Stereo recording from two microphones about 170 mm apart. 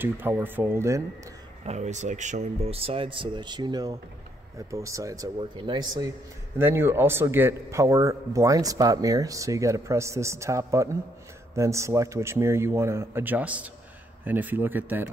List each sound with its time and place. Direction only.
0.0 s a man's voice: 10° right (ahead or behind)
1.6 s a man's voice: 40° right (ahead or behind); by 15.0 s 10° right (ahead or behind)